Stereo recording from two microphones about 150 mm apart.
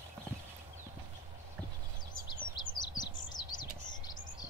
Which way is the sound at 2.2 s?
30° left (ahead or behind).